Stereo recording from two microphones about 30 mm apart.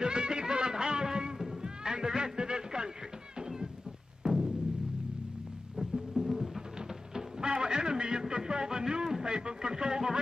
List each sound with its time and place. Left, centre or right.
0.0 s music: right
1.6 s cat: right
3.3 s a sound: centre
4.2 s music: centre
5.9 s music: centre
7.2 s a sound: right